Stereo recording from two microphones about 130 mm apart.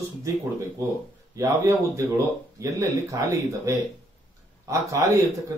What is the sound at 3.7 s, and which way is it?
A man's voice, 20° right (ahead or behind).